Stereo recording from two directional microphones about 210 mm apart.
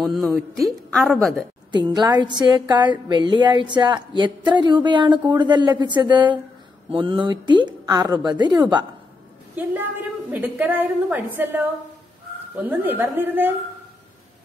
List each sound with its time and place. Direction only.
0.0 s a woman's voice: centre (ahead or behind)
2.0 s speech: 20° right (ahead or behind)
10.3 s a woman's voice: 10° right (ahead or behind)